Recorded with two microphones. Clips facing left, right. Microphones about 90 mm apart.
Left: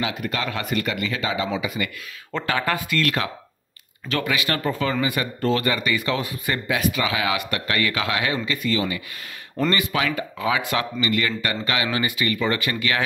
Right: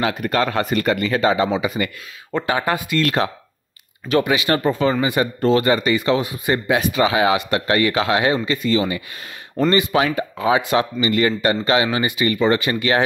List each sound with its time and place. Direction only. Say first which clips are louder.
0.0 s speech: right 7 dB; 45° right (ahead or behind)
2.3 s speech: right 4 dB; 20° right (ahead or behind)